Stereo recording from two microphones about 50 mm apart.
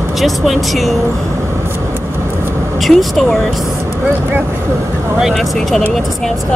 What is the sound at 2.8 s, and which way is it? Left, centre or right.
Speech, centre.